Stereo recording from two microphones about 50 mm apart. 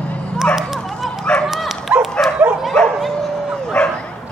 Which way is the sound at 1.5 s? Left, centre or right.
Centre.